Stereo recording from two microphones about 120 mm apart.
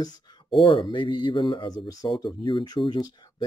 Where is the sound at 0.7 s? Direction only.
45° left (ahead or behind).